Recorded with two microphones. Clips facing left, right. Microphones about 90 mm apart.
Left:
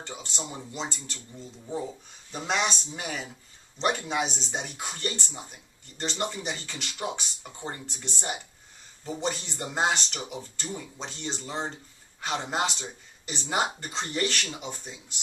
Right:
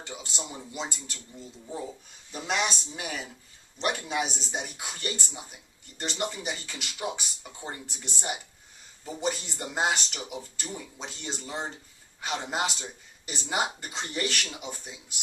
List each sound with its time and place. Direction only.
0.0 s speech: 5° right (ahead or behind)